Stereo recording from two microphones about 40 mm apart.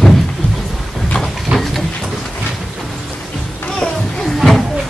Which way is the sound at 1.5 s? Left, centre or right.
Centre.